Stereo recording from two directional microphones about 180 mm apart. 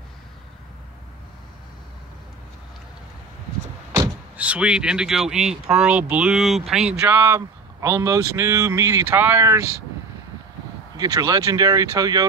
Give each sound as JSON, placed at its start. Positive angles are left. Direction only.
{"t": 4.4, "sound": "speech", "side_deg": -5}
{"t": 11.0, "sound": "speech", "side_deg": -20}